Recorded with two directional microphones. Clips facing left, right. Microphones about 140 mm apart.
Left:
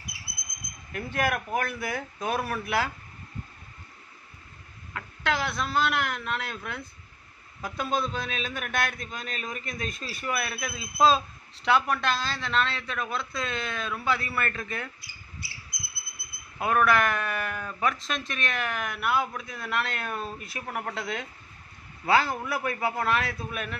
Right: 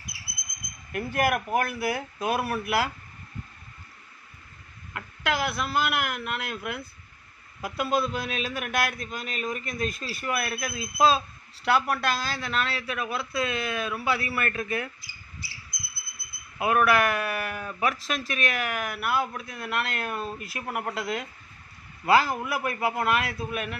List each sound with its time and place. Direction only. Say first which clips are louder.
0.9 s a man's voice: right 3 dB; 10° right (ahead or behind)
4.9 s a man's voice: even; 5° right (ahead or behind)
16.5 s a man's voice: right 1 dB; 5° right (ahead or behind)